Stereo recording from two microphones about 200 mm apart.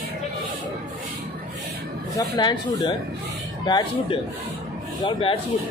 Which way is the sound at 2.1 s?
20° left (ahead or behind).